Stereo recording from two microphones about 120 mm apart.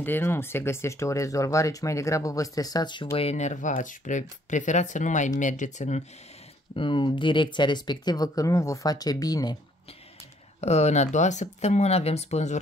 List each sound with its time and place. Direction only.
0.0 s speech: 20° left (ahead or behind); by 3.1 s 40° left (ahead or behind)
3.2 s speech: 65° left (ahead or behind)
6.7 s speech: 45° left (ahead or behind)
10.6 s speech: 65° left (ahead or behind)